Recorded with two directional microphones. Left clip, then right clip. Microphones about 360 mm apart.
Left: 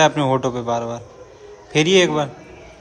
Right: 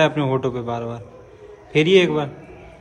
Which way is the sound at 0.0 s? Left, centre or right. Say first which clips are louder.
Left 3 dB; centre.